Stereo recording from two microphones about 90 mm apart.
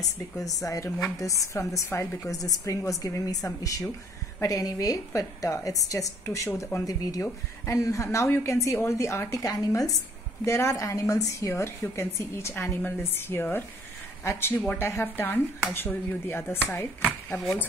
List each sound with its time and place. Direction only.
0.0 s a woman's voice: 40° left (ahead or behind); by 17.4 s 25° left (ahead or behind)